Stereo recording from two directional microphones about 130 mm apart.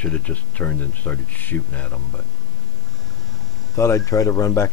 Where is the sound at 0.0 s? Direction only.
10° left (ahead or behind).